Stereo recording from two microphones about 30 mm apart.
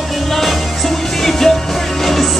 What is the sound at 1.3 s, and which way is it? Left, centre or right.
Music, centre.